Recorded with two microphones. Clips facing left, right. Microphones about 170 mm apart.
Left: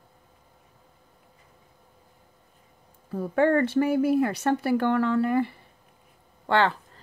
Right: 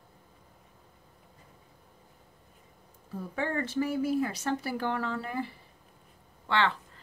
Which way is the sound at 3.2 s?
65° left (ahead or behind).